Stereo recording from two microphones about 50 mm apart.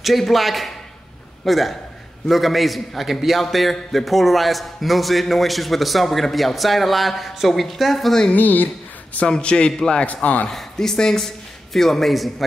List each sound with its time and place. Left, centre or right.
0.0 s a man's voice: centre
8.4 s a woman's voice: left
9.3 s a man's voice: centre
10.0 s speech: left
10.5 s speech: centre